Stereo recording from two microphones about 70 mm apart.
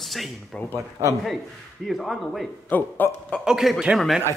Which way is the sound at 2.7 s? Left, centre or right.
Left.